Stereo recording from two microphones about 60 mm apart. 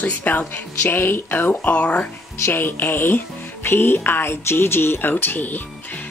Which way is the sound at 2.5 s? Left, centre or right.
Left.